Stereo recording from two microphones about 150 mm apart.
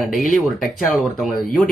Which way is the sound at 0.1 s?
Centre (ahead or behind).